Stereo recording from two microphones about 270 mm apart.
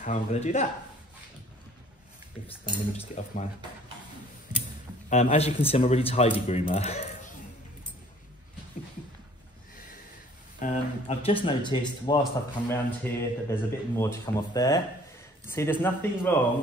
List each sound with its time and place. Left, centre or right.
0.0 s speech: left
3.1 s speech: left
5.1 s speech: left
10.6 s speech: left; by 16.3 s centre